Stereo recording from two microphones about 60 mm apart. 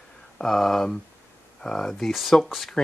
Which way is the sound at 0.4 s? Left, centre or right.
Centre.